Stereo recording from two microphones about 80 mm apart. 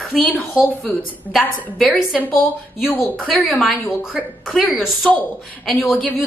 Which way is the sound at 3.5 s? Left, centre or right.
Centre.